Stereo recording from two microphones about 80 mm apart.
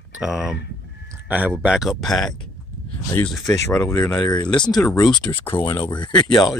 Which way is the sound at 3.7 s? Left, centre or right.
Left.